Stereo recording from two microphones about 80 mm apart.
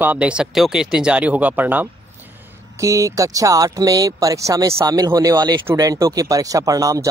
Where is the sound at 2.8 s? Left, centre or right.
Right.